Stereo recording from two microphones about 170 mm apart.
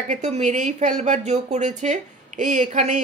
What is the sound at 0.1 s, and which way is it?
A woman's voice, 45° right (ahead or behind).